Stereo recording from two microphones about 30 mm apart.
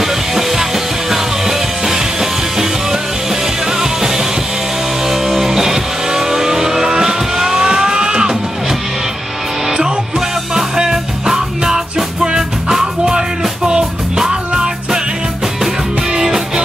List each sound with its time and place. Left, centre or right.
0.0 s music: centre
10.1 s music: centre
13.7 s music: right
16.2 s music: centre